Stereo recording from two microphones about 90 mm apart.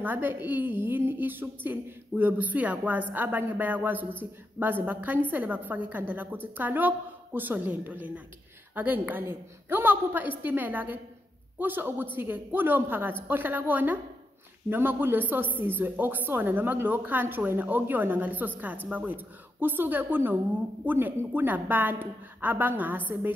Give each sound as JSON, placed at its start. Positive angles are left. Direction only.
{"t": 0.0, "sound": "a woman's voice", "side_deg": -20}